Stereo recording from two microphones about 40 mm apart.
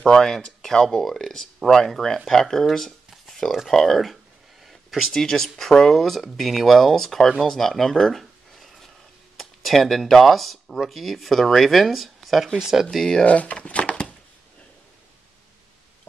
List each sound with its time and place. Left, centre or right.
0.0 s speech: centre
3.3 s a sound: centre
3.7 s speech: centre
4.6 s a sound: centre
5.1 s speech: centre
12.5 s speech: centre
12.9 s speech: centre
13.2 s speech: left